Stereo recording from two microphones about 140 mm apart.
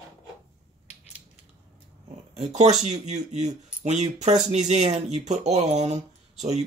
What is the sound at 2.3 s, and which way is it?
Speech, 55° right (ahead or behind).